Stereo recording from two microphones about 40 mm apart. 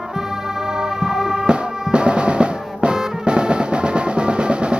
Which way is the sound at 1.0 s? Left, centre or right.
Centre.